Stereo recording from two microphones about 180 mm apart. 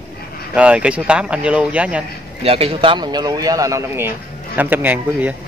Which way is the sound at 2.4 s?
35° right (ahead or behind).